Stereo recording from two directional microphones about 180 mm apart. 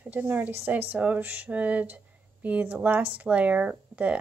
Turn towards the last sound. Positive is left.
turn(degrees=-5)  # may be behind; listen again after turning